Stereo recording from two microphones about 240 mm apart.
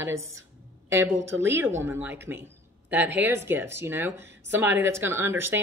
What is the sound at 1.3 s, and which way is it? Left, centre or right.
Speech, centre.